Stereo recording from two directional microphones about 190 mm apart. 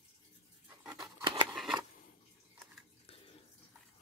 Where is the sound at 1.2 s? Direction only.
25° right (ahead or behind).